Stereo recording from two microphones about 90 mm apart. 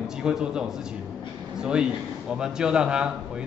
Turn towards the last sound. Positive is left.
turn(degrees=-10)  # may be behind; listen again after turning